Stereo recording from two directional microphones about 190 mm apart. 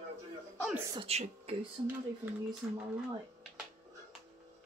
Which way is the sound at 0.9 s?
30° right (ahead or behind).